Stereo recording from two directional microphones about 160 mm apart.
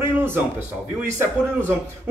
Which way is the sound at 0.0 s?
15° right (ahead or behind).